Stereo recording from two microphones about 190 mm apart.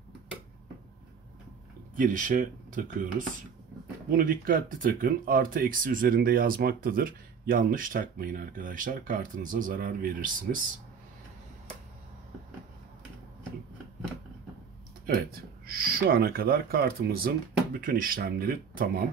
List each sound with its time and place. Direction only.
2.0 s speech: 45° right (ahead or behind)
15.3 s speech: 50° right (ahead or behind)